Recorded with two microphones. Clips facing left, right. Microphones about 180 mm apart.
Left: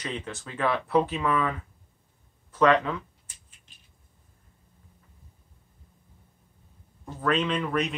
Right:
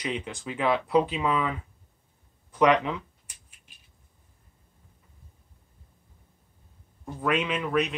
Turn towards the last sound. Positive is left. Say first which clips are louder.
# even
turn(degrees=-5)  # may be behind; listen again after turning